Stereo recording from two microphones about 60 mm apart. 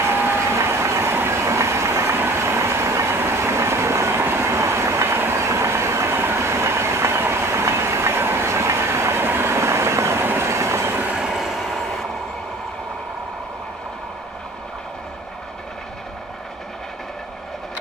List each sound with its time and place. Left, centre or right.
0.0 s train: right
11.2 s vehicle: centre